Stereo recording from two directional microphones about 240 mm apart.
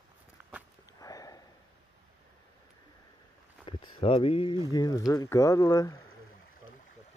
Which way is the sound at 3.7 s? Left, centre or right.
Centre.